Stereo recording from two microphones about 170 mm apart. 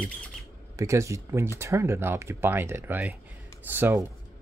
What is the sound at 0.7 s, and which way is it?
Speech, 15° right (ahead or behind).